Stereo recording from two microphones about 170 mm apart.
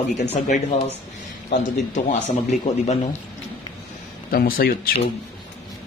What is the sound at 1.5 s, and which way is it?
A man's voice, 45° left (ahead or behind).